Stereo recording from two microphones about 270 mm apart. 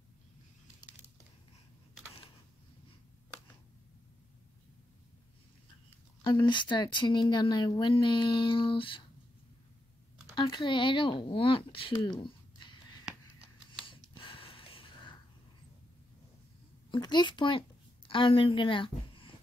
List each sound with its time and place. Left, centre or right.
6.2 s speech: centre
10.3 s speech: centre
13.8 s a sound: centre
16.9 s a child's voice: centre